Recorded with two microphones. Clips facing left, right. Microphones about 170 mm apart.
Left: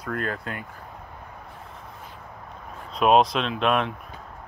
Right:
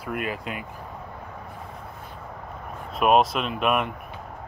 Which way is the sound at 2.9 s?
5° right (ahead or behind).